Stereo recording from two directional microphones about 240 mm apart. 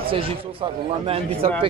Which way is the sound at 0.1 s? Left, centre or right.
Right.